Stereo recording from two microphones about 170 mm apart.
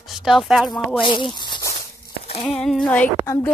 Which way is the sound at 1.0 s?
30° left (ahead or behind).